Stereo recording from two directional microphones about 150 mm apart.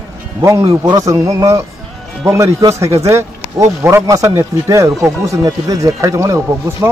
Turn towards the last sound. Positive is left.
turn(degrees=-20)  # may be behind; listen again after turning